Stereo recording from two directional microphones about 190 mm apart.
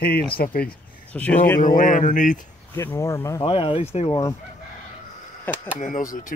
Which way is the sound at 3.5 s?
30° left (ahead or behind).